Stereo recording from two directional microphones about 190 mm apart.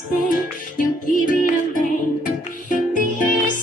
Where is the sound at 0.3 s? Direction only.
45° left (ahead or behind).